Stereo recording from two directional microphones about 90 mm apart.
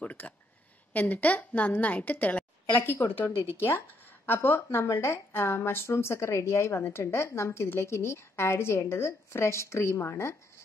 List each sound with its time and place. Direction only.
0.0 s a woman's voice: 15° left (ahead or behind)